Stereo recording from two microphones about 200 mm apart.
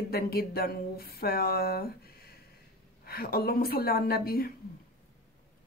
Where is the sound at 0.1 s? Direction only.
50° left (ahead or behind).